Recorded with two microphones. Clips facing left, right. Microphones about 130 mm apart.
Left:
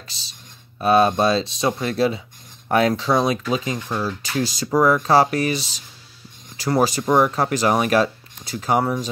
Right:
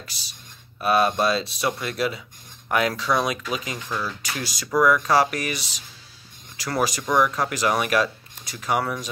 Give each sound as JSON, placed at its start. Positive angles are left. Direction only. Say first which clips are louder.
{"t": 0.7, "sound": "speech", "louder": "left 4 dB", "side_deg": 25}